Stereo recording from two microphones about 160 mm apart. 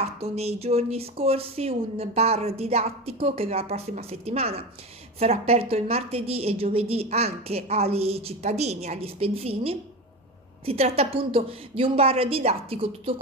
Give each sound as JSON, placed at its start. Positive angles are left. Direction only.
{"t": 0.2, "sound": "a woman's voice", "side_deg": -40}